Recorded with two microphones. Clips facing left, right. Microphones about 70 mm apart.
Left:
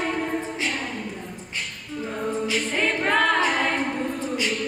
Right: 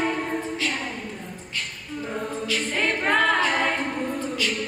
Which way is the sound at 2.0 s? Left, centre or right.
Centre.